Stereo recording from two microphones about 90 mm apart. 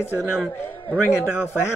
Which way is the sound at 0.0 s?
25° left (ahead or behind).